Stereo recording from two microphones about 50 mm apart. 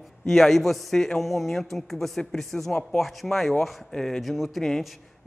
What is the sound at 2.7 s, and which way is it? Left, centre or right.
Speech, centre.